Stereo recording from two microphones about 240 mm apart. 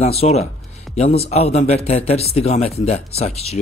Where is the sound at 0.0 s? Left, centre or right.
Left.